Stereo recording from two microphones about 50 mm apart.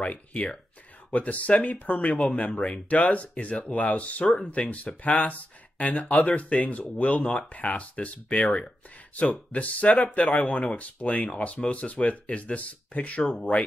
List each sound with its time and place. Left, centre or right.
0.0 s speech: left
13.2 s speech: centre